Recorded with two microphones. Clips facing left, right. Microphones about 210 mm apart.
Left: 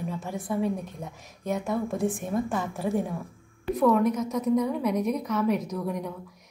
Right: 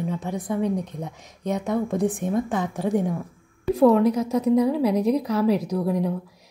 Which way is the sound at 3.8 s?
30° right (ahead or behind).